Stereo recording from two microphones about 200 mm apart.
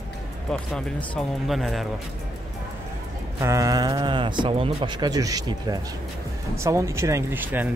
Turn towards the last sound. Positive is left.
turn(degrees=-10)  # may be behind; listen again after turning